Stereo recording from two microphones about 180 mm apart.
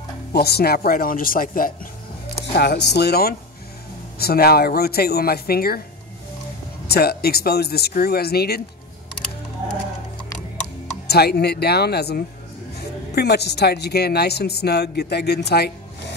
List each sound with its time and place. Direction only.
0.3 s speech: 60° left (ahead or behind)
2.4 s speech: 65° left (ahead or behind)
6.9 s speech: 60° left (ahead or behind)
11.1 s speech: 60° left (ahead or behind)